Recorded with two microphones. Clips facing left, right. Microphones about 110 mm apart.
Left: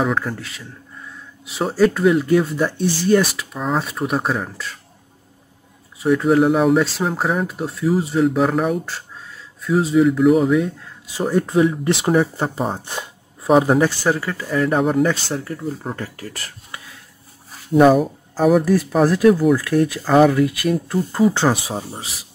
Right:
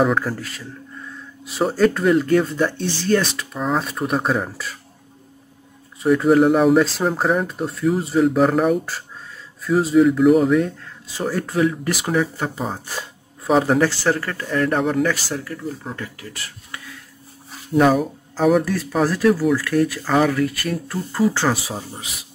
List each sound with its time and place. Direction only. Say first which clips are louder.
0.0 s speech: right 2 dB; centre (ahead or behind)
3.3 s speech: even; centre (ahead or behind)
5.9 s speech: right 1 dB; centre (ahead or behind)
11.1 s speech: left 4 dB; 15° left (ahead or behind); by 12.6 s 35° left (ahead or behind)
12.7 s a sound: left 1 dB; 20° left (ahead or behind)
13.5 s speech: left 2 dB; 10° left (ahead or behind)
15.3 s speech: left 2 dB; 25° left (ahead or behind)
17.8 s speech: left 5 dB; centre (ahead or behind)
18.7 s speech: left 4 dB; 15° left (ahead or behind)